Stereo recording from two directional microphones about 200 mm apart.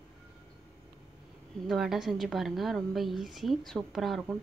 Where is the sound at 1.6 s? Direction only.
Centre (ahead or behind).